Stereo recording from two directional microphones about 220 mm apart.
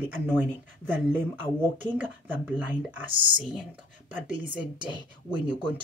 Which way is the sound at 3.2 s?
20° right (ahead or behind).